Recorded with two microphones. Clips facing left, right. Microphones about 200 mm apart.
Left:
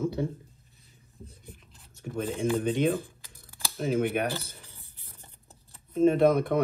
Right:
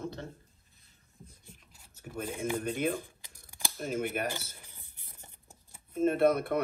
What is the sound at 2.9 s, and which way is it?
Speech, 15° right (ahead or behind).